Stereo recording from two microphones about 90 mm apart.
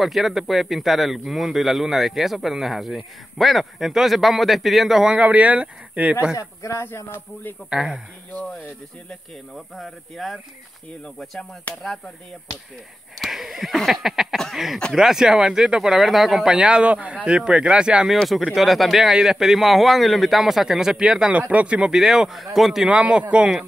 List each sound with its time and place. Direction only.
0.0 s speech: centre (ahead or behind)
5.2 s speech: 15° right (ahead or behind)
6.3 s a man's voice: 35° left (ahead or behind)
7.7 s speech: 5° right (ahead or behind)
9.8 s speech: centre (ahead or behind)
11.7 s speech: 15° left (ahead or behind)
13.2 s speech: 5° right (ahead or behind)